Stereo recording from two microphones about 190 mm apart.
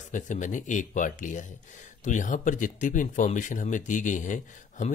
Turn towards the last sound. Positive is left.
turn(degrees=40)  # may be behind; listen again after turning